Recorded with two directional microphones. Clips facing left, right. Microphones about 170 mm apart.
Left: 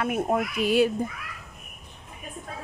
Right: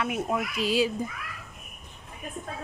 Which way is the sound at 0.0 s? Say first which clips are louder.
Left 3 dB; 50° left (ahead or behind).